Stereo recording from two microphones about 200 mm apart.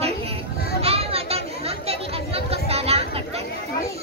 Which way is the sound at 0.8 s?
30° right (ahead or behind).